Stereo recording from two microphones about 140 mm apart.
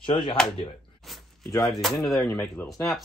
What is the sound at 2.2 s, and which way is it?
Speech, 25° left (ahead or behind).